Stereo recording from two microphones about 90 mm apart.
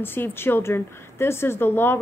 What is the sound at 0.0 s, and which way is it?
A woman's voice, 25° left (ahead or behind).